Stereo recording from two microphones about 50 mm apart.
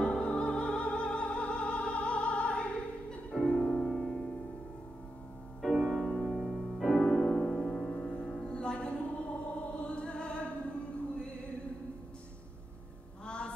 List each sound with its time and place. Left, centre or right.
0.0 s opera: centre
3.4 s music: left
3.8 s music: centre
5.6 s music: centre
6.0 s music: centre
6.9 s music: centre
13.2 s a sound: centre